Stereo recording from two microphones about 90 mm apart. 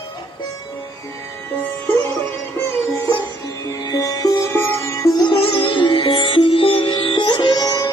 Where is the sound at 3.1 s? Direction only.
40° left (ahead or behind).